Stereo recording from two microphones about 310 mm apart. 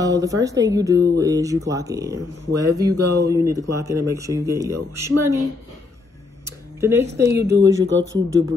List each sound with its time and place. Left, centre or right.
0.0 s speech: centre
6.8 s speech: centre
7.2 s speech: right